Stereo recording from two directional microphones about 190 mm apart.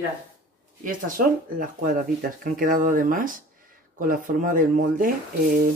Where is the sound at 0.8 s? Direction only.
50° right (ahead or behind).